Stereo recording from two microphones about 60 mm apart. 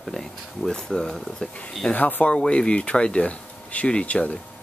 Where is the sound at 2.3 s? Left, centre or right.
Centre.